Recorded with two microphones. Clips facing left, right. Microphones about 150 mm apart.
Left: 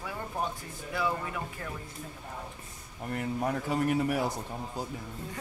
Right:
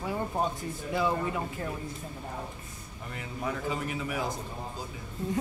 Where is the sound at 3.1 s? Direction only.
50° left (ahead or behind).